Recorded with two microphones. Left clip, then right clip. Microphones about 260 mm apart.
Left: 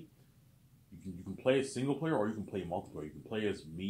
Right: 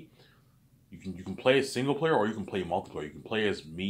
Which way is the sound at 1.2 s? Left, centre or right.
Right.